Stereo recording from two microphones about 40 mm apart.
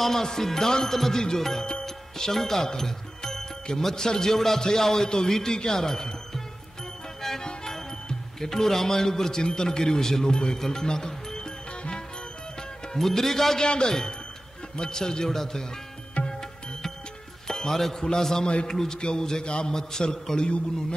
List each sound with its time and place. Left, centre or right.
0.0 s music: centre
1.9 s speech: centre
7.2 s music: centre
7.4 s speech: centre
12.9 s music: centre
13.7 s music: centre